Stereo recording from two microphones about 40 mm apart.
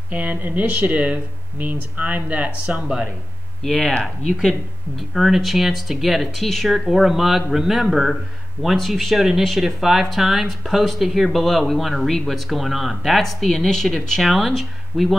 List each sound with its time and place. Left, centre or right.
0.1 s speech: right
2.6 s speech: right
3.6 s speech: centre